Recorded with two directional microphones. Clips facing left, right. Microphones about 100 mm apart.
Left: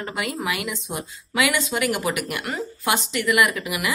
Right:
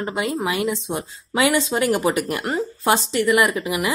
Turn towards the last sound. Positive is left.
turn(degrees=-30)  # may be behind; listen again after turning